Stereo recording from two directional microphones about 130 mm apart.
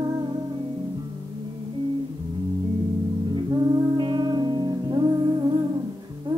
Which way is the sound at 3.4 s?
30° right (ahead or behind).